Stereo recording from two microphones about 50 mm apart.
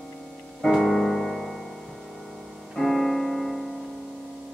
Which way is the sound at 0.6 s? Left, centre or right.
Centre.